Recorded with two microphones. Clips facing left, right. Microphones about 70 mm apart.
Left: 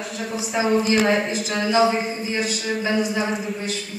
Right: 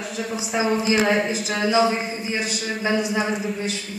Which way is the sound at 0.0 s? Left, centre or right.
Centre.